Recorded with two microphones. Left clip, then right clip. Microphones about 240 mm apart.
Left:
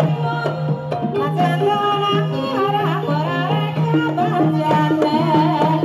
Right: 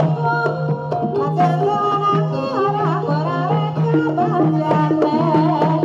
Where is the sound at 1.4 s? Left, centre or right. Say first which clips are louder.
Even; left.